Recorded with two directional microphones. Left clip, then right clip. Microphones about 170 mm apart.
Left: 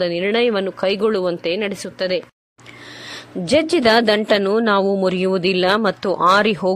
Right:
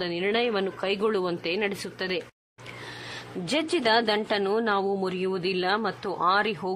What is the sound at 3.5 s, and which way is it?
A woman's voice, 30° left (ahead or behind).